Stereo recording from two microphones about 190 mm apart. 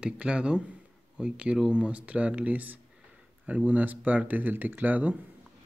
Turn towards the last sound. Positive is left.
turn(degrees=-10)  # may be behind; listen again after turning